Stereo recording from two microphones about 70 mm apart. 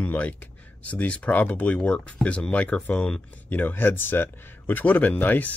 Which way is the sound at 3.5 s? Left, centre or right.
Left.